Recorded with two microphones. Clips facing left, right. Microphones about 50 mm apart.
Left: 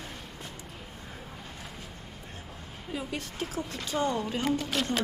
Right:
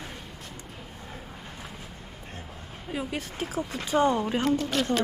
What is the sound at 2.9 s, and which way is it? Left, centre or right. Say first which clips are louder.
Speech: right 3 dB; centre.